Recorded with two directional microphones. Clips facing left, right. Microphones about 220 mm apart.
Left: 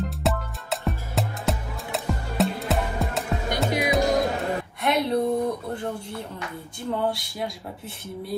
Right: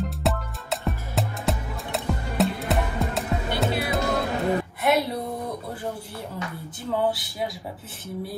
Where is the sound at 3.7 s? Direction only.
15° left (ahead or behind).